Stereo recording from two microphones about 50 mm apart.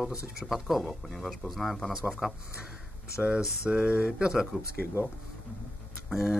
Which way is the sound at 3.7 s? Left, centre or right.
Right.